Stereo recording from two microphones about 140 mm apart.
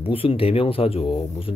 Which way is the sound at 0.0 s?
40° left (ahead or behind).